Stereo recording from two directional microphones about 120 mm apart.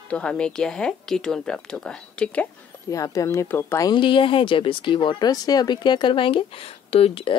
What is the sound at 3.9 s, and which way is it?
Speech, 40° left (ahead or behind).